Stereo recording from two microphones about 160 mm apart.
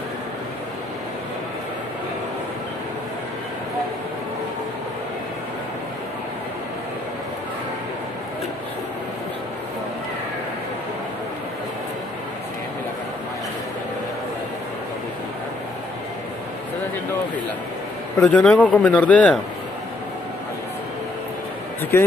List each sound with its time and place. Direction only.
18.2 s speech: 10° left (ahead or behind)
21.9 s speech: 15° left (ahead or behind)